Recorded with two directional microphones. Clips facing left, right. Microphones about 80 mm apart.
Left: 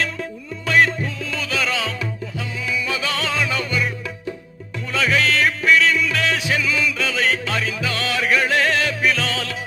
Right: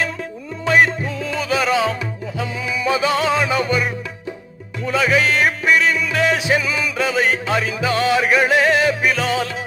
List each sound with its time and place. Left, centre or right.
0.7 s music: right
4.8 s music: centre